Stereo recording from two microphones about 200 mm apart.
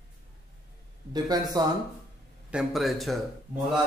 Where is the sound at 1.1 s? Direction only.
20° right (ahead or behind).